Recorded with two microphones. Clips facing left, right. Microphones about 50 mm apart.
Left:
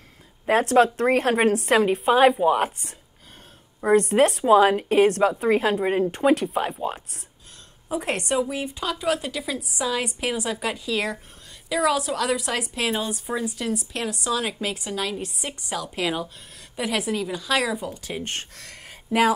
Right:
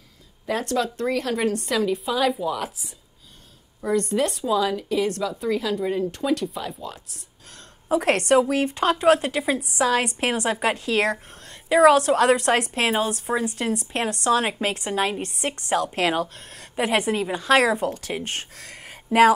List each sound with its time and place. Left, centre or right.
0.5 s speech: left
3.8 s speech: left
7.9 s a woman's voice: right
12.7 s a woman's voice: right
15.2 s a woman's voice: right
15.7 s a woman's voice: right
16.7 s a woman's voice: right
18.1 s speech: right